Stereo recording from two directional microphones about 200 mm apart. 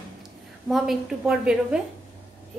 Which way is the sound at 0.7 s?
Centre (ahead or behind).